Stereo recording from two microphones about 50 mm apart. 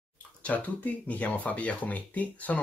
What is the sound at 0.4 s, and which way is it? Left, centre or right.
Speech, left.